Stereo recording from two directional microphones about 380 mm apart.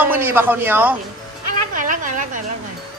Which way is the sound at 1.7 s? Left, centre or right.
Right.